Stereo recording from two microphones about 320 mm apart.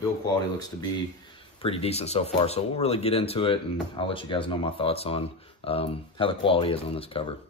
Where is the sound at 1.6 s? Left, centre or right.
Centre.